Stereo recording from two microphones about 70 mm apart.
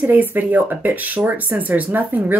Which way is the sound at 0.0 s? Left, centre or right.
Right.